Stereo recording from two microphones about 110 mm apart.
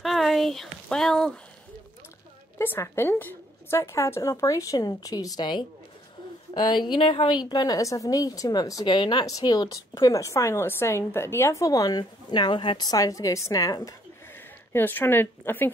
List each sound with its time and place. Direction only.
0.0 s a sound: centre (ahead or behind)
2.6 s a woman's voice: 20° left (ahead or behind)
14.7 s a woman's voice: 20° left (ahead or behind)